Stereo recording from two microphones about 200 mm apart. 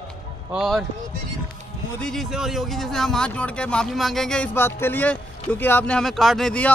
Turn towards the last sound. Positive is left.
turn(degrees=5)  # may be behind; listen again after turning